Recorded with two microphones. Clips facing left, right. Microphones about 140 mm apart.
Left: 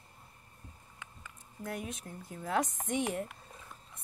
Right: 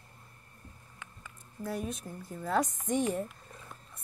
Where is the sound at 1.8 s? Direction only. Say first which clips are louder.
Right 4 dB; 20° left (ahead or behind).